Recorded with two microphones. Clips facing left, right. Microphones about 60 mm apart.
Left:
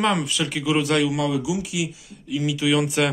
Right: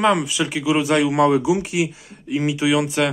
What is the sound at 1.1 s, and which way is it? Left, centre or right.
Speech, right.